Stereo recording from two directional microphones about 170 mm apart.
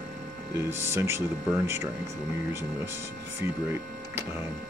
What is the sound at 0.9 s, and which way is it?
Speech, 15° right (ahead or behind).